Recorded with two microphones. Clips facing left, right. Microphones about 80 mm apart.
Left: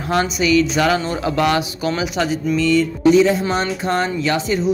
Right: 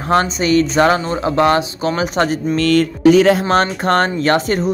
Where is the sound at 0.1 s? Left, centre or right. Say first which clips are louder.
Right 3 dB; right.